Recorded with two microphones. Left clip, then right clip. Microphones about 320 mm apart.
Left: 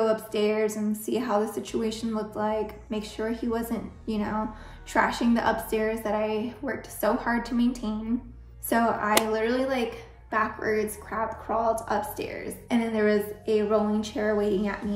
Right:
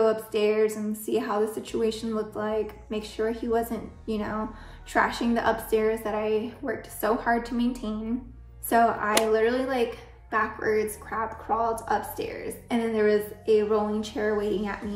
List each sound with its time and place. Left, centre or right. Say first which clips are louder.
0.3 s a woman's voice: right 2 dB; centre